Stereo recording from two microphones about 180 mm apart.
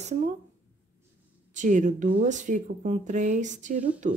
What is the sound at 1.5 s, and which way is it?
Speech, 45° right (ahead or behind).